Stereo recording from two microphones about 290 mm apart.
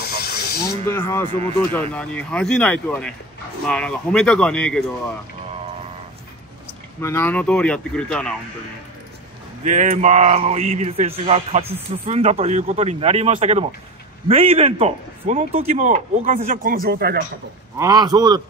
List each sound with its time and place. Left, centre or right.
0.0 s snake: left
0.9 s speech: centre
1.7 s speech: centre
7.0 s speech: centre
9.7 s a man's voice: right
17.7 s a man's voice: centre